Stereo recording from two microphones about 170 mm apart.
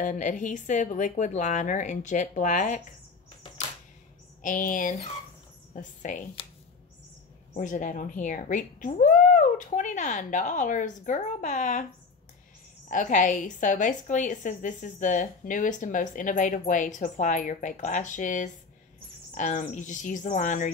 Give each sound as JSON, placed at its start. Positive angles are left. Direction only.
{"t": 0.0, "sound": "a woman's voice", "side_deg": 45}
{"t": 4.4, "sound": "a woman's voice", "side_deg": 50}
{"t": 6.4, "sound": "speech", "side_deg": 30}
{"t": 7.5, "sound": "a woman's voice", "side_deg": 45}
{"t": 12.8, "sound": "a woman's voice", "side_deg": 50}